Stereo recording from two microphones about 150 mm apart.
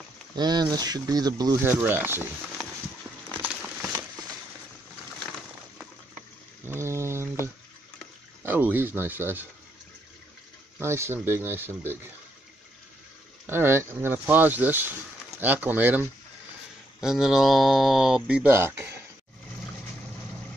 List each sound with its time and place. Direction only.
0.4 s speech: 30° right (ahead or behind)
1.8 s speech: 15° right (ahead or behind)
3.4 s crumpling: 10° right (ahead or behind)
6.6 s a sound: 15° right (ahead or behind)
8.4 s speech: 10° right (ahead or behind)
10.8 s speech: 15° right (ahead or behind)
13.5 s speech: 15° right (ahead or behind)